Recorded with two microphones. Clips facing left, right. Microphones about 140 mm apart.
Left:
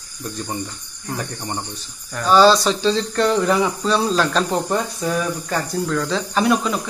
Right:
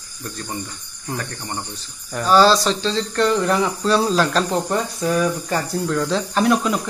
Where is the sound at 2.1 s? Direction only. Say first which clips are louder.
Left 1 dB; 5° right (ahead or behind).